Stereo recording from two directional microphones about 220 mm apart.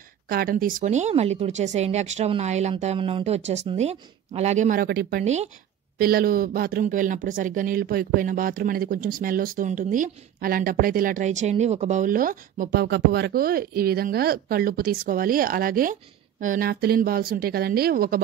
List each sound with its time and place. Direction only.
0.3 s speech: 40° right (ahead or behind)
5.2 s speech: 30° right (ahead or behind)
5.9 s speech: 45° right (ahead or behind)